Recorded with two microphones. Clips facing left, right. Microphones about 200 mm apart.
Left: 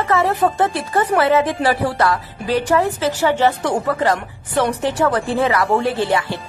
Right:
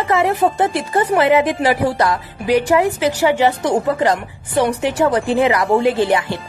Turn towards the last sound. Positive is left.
turn(degrees=-15)  # may be behind; listen again after turning